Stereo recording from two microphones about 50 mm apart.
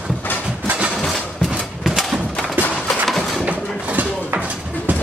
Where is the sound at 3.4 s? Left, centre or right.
Right.